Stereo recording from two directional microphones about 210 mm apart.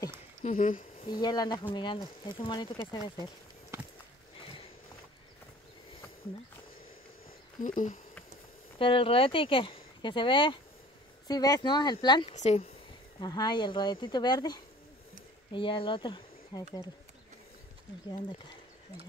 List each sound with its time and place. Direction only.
0.4 s speech: 35° left (ahead or behind)
1.2 s speech: 20° left (ahead or behind)
3.7 s a sound: 15° right (ahead or behind)
7.6 s speech: 40° left (ahead or behind)
8.7 s speech: 25° left (ahead or behind)
12.4 s speech: 30° left (ahead or behind)
13.2 s speech: 20° left (ahead or behind)